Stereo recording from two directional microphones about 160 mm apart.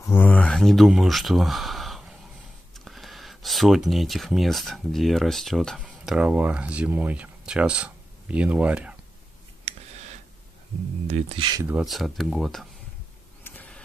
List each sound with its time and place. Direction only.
0.0 s speech: 15° left (ahead or behind); by 8.9 s 10° right (ahead or behind)
11.1 s speech: 45° right (ahead or behind)
11.6 s speech: 5° right (ahead or behind)
13.4 s vehicle: 10° left (ahead or behind)